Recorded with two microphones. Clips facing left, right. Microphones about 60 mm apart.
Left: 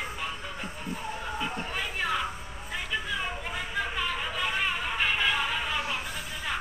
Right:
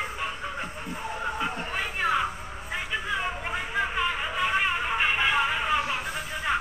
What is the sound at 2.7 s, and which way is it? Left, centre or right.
Vehicle, right.